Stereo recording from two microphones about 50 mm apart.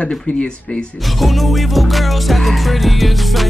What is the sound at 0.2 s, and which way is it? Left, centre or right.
Speech, left.